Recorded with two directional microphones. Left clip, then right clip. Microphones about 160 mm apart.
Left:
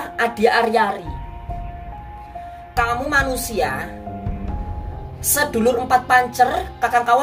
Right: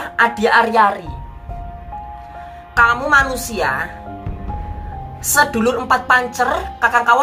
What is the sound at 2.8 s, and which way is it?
A woman's voice, 10° left (ahead or behind).